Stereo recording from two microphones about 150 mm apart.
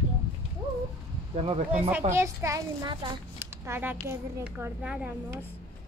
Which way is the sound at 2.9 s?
30° right (ahead or behind).